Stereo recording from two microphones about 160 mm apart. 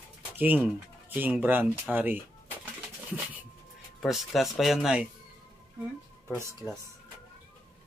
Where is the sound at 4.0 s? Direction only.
Centre (ahead or behind).